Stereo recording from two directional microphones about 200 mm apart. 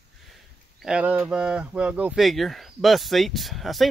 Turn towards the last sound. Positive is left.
turn(degrees=0)  # may be behind; listen again after turning